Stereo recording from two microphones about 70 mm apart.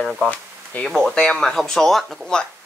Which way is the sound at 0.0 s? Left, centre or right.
Centre.